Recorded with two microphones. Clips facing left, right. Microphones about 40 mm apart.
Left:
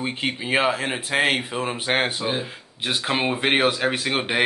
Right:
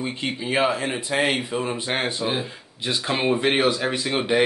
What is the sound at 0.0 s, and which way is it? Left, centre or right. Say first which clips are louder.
A man's voice: left 1 dB; left.